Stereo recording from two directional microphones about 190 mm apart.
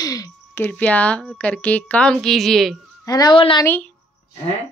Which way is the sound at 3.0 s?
20° left (ahead or behind).